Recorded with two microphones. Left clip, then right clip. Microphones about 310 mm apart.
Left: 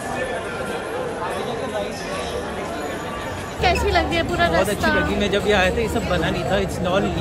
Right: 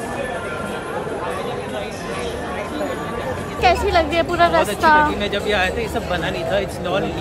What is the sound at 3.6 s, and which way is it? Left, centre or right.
Speech, centre.